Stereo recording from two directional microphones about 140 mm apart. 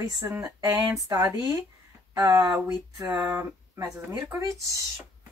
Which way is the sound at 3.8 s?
25° right (ahead or behind).